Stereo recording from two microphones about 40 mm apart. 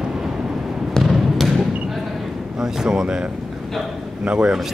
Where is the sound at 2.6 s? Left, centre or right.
Centre.